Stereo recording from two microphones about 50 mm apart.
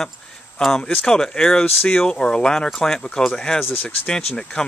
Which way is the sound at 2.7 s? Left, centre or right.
Centre.